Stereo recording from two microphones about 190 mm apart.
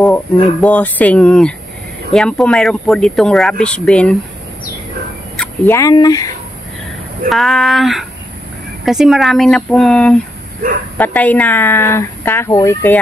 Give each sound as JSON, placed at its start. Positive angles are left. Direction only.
{"t": 0.0, "sound": "speech", "side_deg": 10}
{"t": 5.4, "sound": "speech", "side_deg": 15}
{"t": 7.2, "sound": "speech", "side_deg": 0}
{"t": 10.6, "sound": "speech", "side_deg": -50}
{"t": 11.0, "sound": "speech", "side_deg": 10}